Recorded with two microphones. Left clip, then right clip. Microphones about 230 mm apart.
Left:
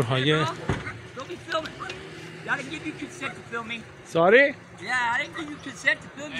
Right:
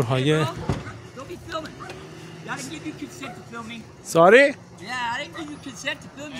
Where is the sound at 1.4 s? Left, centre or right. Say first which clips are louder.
Left 4 dB; right.